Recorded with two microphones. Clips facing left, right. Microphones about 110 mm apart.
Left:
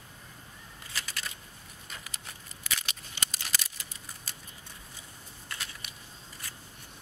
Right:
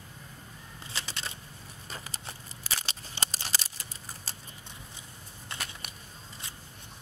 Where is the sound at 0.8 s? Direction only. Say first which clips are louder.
Right 1 dB; 25° right (ahead or behind).